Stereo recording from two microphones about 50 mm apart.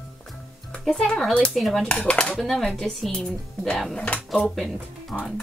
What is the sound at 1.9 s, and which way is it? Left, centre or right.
Speech, left.